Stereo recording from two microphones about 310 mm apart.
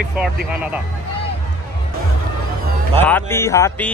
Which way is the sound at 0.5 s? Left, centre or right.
Centre.